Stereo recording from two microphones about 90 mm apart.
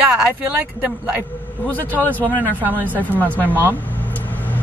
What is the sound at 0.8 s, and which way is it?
Speech, 10° right (ahead or behind).